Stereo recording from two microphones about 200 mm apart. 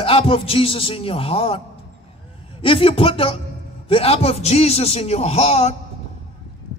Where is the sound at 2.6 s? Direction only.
25° left (ahead or behind).